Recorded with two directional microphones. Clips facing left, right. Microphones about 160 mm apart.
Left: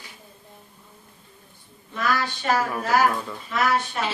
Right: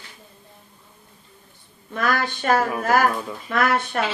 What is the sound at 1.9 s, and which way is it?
A woman's voice, 50° right (ahead or behind).